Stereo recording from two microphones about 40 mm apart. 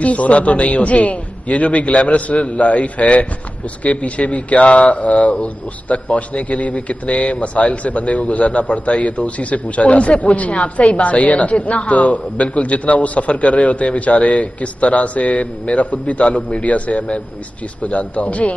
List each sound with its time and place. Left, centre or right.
0.0 s a man's voice: left